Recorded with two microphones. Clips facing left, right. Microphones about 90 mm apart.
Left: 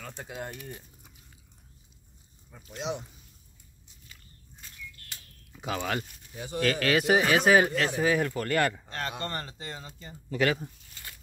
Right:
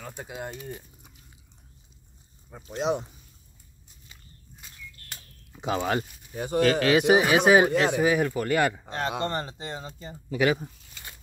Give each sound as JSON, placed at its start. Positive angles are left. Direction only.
{"t": 0.0, "sound": "speech", "side_deg": -10}
{"t": 0.5, "sound": "speech", "side_deg": -20}
{"t": 2.8, "sound": "speech", "side_deg": -45}
{"t": 5.5, "sound": "a sound", "side_deg": -25}
{"t": 5.8, "sound": "speech", "side_deg": -30}
{"t": 6.3, "sound": "speech", "side_deg": -50}
{"t": 6.6, "sound": "speech", "side_deg": -20}
{"t": 10.3, "sound": "a sound", "side_deg": -15}